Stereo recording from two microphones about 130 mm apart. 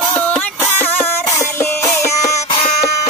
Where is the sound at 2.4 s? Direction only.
55° left (ahead or behind).